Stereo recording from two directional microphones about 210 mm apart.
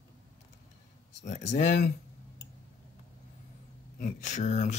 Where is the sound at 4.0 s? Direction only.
35° left (ahead or behind).